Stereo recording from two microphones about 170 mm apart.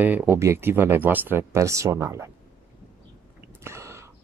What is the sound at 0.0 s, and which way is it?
Speech, 10° right (ahead or behind).